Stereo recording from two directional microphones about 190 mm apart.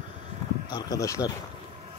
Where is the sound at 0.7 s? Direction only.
20° left (ahead or behind).